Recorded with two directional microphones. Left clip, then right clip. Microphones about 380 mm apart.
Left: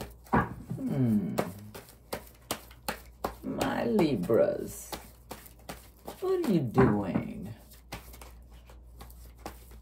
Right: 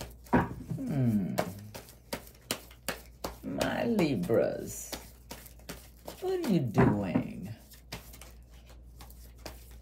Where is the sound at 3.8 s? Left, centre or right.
Centre.